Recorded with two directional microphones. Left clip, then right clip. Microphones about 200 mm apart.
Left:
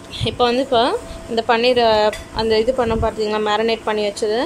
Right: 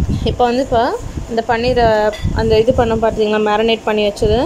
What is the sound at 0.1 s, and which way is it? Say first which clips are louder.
A woman's voice: right 2 dB; 5° right (ahead or behind).